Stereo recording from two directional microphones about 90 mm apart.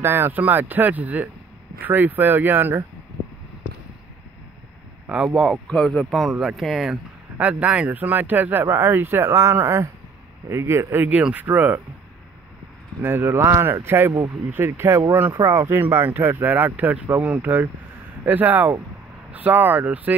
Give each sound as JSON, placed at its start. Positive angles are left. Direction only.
{"t": 0.0, "sound": "speech", "side_deg": -25}
{"t": 5.0, "sound": "speech", "side_deg": -10}
{"t": 5.7, "sound": "speech", "side_deg": 10}
{"t": 6.0, "sound": "speech", "side_deg": 0}
{"t": 7.3, "sound": "speech", "side_deg": -15}
{"t": 11.1, "sound": "speech", "side_deg": -15}
{"t": 13.0, "sound": "speech", "side_deg": -25}